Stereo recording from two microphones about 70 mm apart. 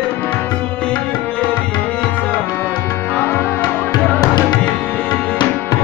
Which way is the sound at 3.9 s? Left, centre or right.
Left.